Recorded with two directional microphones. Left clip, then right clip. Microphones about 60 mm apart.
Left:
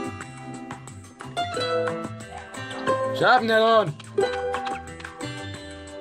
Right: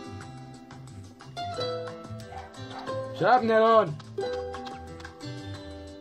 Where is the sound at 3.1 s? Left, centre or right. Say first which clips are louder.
Left 2 dB; left.